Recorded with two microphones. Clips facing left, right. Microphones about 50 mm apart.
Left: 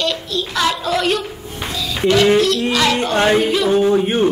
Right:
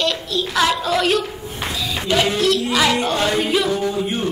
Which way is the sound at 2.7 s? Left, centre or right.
Centre.